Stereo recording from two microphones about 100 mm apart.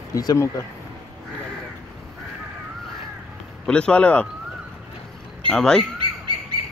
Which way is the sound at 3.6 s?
10° left (ahead or behind).